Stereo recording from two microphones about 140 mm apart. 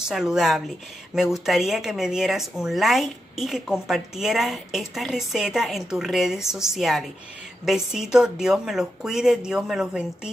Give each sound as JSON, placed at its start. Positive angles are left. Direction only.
{"t": 0.0, "sound": "speech", "side_deg": -5}